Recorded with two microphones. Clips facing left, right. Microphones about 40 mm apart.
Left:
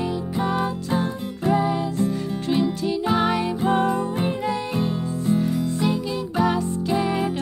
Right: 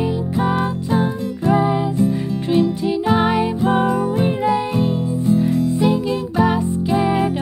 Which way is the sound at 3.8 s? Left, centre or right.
Right.